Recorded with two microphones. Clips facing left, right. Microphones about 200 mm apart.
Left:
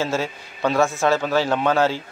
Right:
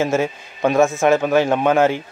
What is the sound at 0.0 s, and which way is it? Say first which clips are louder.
A man's voice: right 5 dB; 15° right (ahead or behind).